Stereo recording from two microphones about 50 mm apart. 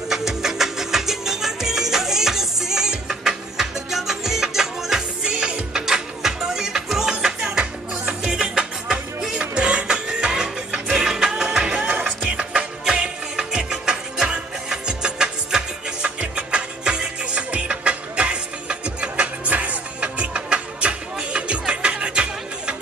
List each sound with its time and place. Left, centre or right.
0.1 s music: centre